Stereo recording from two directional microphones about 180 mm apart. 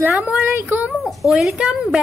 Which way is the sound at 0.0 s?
5° right (ahead or behind).